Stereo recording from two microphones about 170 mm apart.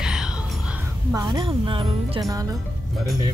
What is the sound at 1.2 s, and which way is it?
Speech, 25° right (ahead or behind).